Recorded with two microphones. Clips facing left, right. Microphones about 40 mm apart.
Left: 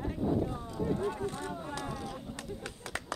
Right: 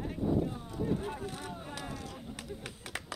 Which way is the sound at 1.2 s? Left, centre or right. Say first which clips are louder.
Left 4 dB; left.